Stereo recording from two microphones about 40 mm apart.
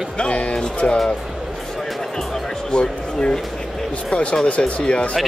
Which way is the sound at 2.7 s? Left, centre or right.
Left.